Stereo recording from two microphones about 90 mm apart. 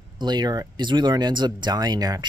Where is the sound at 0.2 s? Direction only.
50° right (ahead or behind).